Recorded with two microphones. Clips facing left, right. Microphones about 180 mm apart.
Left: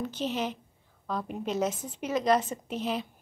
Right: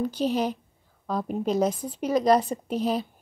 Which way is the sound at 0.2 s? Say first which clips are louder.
Right 5 dB; 40° right (ahead or behind).